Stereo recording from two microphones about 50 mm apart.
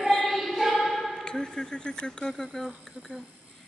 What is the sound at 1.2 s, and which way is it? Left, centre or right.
Speech, centre.